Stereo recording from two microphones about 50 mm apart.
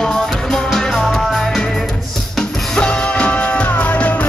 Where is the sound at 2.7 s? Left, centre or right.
Left.